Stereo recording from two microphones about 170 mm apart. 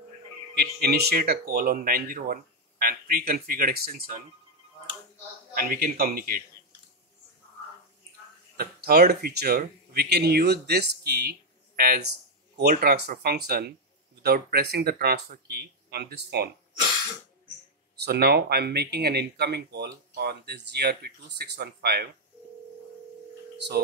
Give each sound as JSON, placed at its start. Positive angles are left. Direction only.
{"t": 0.6, "sound": "speech", "side_deg": -70}
{"t": 5.5, "sound": "speech", "side_deg": -60}
{"t": 8.5, "sound": "speech", "side_deg": -65}
{"t": 17.9, "sound": "speech", "side_deg": -70}